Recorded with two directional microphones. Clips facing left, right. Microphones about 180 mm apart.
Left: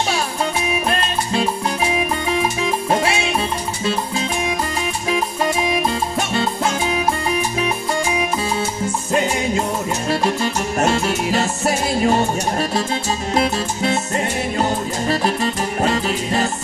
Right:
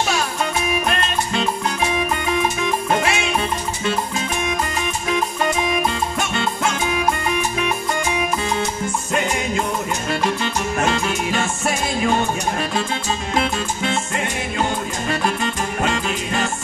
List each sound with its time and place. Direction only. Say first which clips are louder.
2.9 s music: left 2 dB; 30° left (ahead or behind)
5.9 s music: left 2 dB; 35° left (ahead or behind)
9.1 s music: left 3 dB; 35° left (ahead or behind)